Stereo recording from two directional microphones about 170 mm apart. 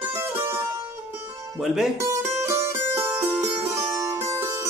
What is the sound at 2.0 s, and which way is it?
Music, 15° right (ahead or behind).